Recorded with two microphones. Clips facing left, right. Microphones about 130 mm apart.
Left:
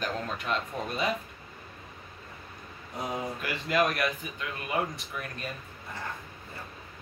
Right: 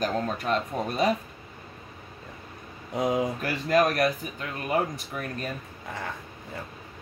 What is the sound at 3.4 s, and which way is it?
Speech, 40° right (ahead or behind).